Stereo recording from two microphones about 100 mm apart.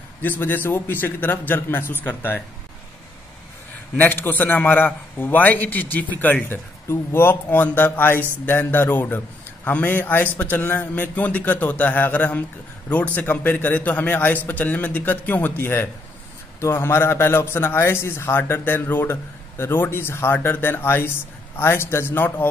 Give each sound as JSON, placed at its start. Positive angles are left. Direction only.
{"t": 0.2, "sound": "a man's voice", "side_deg": 20}
{"t": 3.9, "sound": "a man's voice", "side_deg": 20}